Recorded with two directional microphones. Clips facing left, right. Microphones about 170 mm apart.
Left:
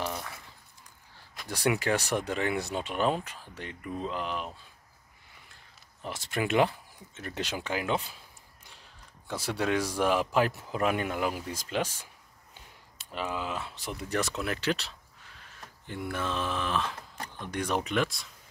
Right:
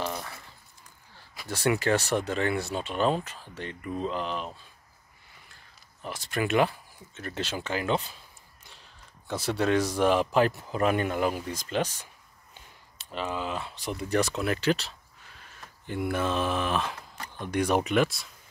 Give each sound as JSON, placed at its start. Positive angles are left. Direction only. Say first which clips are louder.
{"t": 1.5, "sound": "speech", "louder": "right 2 dB", "side_deg": 15}
{"t": 6.0, "sound": "speech", "louder": "right 1 dB", "side_deg": 20}
{"t": 9.3, "sound": "speech", "louder": "right 4 dB", "side_deg": 10}
{"t": 15.9, "sound": "mantra", "louder": "right 5 dB", "side_deg": -10}